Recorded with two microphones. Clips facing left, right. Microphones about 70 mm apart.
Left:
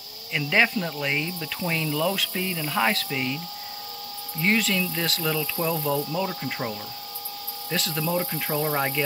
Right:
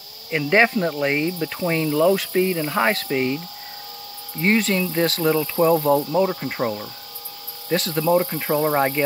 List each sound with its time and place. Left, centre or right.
0.3 s speech: right
4.4 s speech: right